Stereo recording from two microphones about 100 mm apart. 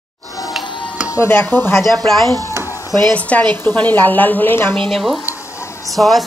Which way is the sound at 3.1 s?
15° left (ahead or behind).